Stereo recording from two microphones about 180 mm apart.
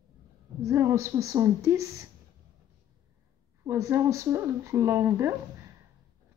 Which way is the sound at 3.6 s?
15° right (ahead or behind).